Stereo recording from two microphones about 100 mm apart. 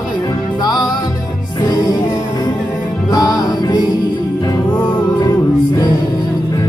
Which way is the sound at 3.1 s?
40° left (ahead or behind).